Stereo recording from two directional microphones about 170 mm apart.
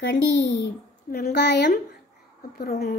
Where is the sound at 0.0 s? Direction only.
90° left.